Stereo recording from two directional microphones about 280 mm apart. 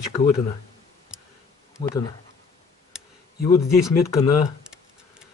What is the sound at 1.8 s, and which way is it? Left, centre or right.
Speech, centre.